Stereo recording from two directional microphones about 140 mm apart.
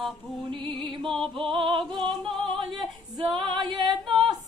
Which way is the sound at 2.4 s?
40° right (ahead or behind).